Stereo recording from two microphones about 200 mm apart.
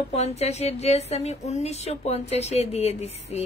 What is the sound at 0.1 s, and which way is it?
Speech, 35° left (ahead or behind).